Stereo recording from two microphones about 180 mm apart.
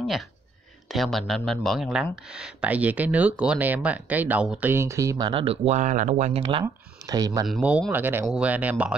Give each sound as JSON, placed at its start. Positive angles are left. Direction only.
{"t": 0.0, "sound": "speech", "side_deg": 0}
{"t": 6.6, "sound": "speech", "side_deg": -20}
{"t": 7.4, "sound": "speech", "side_deg": -5}